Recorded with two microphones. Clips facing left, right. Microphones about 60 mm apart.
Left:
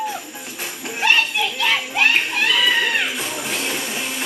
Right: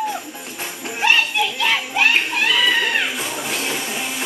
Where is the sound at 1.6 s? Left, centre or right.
Centre.